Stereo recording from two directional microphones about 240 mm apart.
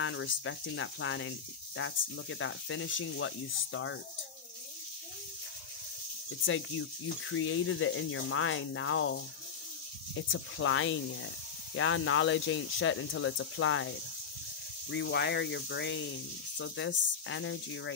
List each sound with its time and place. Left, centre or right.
0.0 s speech: left
6.4 s speech: left